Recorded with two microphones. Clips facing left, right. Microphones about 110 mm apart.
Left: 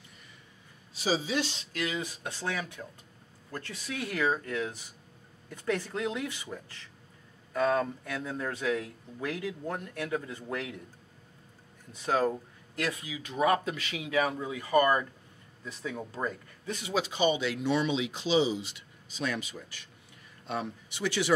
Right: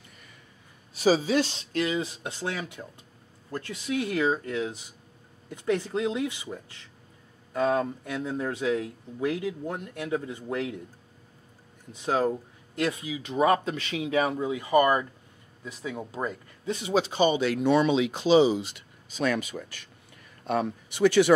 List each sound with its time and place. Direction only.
0.9 s speech: 50° right (ahead or behind)
1.7 s speech: 30° right (ahead or behind)
12.0 s speech: 15° right (ahead or behind); by 21.3 s 50° right (ahead or behind)